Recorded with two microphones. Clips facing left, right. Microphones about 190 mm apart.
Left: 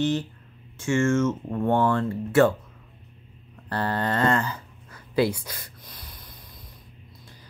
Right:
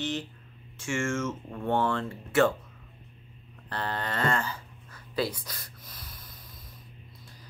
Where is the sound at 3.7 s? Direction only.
50° left (ahead or behind).